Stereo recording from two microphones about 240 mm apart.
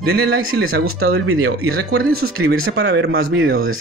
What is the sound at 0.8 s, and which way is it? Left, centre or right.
Speech, right.